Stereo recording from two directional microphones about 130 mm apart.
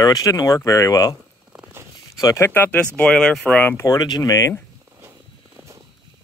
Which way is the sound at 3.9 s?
30° left (ahead or behind).